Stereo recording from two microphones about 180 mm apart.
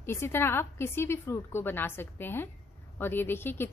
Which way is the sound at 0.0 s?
15° left (ahead or behind).